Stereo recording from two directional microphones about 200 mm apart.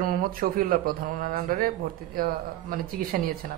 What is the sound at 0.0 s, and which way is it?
Speech, 45° right (ahead or behind).